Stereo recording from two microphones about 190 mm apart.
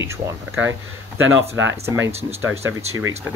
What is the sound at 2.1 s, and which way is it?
Speech, 35° right (ahead or behind).